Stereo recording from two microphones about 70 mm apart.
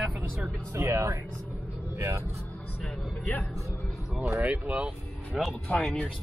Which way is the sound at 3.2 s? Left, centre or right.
Left.